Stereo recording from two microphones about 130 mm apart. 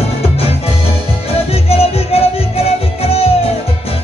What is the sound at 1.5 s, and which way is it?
Music, 50° left (ahead or behind).